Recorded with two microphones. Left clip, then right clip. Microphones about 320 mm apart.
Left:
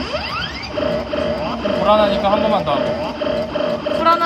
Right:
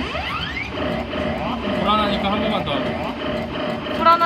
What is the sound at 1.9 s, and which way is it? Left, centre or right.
Speech, left.